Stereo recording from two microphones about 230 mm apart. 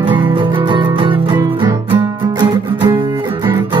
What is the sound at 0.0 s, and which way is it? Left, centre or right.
Music, right.